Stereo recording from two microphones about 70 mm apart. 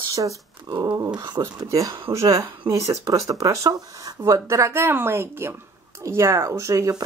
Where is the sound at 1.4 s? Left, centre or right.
Right.